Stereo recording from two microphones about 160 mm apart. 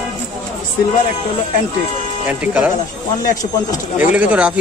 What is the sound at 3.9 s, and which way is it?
Speech, 10° right (ahead or behind).